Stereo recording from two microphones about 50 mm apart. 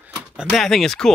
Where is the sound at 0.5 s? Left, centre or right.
Centre.